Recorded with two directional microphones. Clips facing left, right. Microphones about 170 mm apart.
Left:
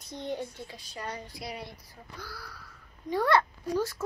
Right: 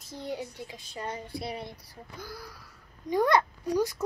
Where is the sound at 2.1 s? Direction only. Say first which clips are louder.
Right 2 dB; 15° right (ahead or behind).